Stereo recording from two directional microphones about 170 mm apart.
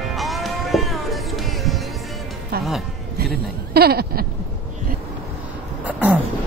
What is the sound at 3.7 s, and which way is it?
Bleat, 65° right (ahead or behind).